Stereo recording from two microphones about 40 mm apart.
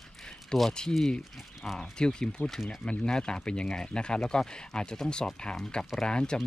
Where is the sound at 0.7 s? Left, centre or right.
Centre.